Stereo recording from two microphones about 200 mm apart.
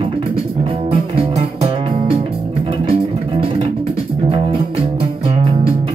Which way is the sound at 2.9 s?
30° right (ahead or behind).